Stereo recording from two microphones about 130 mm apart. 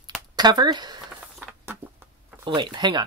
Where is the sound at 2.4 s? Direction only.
35° right (ahead or behind).